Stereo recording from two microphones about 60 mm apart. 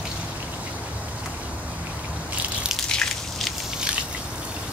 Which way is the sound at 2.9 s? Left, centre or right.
Centre.